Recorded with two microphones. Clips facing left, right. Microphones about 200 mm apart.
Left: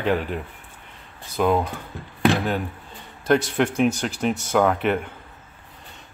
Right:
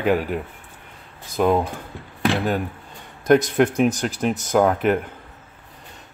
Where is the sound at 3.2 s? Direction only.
5° right (ahead or behind).